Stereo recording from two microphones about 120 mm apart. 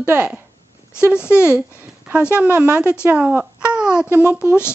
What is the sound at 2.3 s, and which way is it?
A woman's voice, 10° right (ahead or behind).